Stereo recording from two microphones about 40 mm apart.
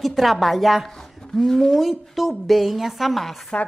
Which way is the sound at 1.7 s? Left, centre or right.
Centre.